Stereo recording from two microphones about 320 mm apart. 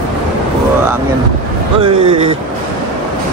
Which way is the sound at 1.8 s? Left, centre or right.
Centre.